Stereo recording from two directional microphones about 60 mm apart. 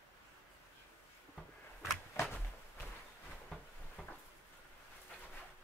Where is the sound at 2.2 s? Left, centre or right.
Left.